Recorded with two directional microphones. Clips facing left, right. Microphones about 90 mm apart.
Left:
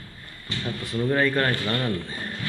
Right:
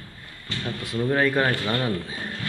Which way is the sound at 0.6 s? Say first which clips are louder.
Even; 10° right (ahead or behind).